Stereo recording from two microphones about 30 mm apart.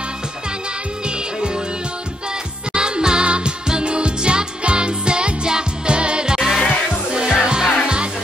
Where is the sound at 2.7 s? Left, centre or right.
Right.